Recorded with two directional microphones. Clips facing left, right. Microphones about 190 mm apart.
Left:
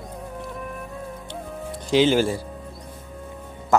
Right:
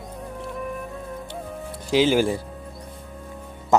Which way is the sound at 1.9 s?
5° right (ahead or behind).